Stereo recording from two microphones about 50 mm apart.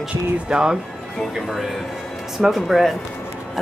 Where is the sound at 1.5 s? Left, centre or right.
Centre.